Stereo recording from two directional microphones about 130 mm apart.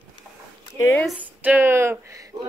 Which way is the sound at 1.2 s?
10° right (ahead or behind).